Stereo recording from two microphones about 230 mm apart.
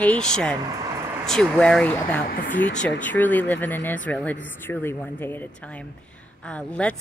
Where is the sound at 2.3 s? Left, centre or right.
Left.